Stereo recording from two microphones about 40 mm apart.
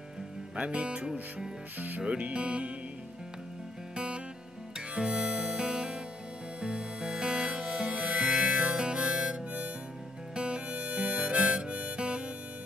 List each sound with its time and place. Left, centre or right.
0.6 s speech: right
1.8 s speech: right
2.0 s speech: right
3.9 s music: right
4.9 s harmonica: right
6.6 s music: right
10.3 s harmonica: right